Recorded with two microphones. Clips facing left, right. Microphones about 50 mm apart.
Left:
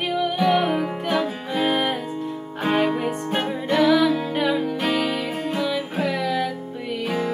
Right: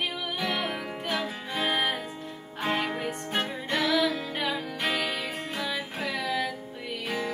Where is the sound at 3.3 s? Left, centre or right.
Left.